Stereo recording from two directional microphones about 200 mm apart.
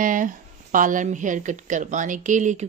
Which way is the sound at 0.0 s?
40° right (ahead or behind).